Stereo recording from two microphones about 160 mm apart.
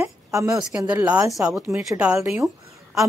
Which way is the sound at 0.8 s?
10° right (ahead or behind).